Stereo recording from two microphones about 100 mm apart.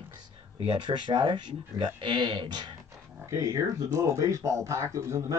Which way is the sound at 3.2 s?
30° right (ahead or behind).